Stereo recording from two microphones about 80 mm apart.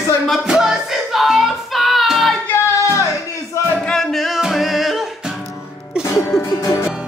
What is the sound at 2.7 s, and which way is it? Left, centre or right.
Music, left.